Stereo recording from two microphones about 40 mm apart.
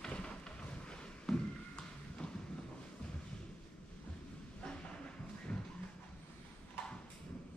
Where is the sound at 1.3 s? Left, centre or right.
Centre.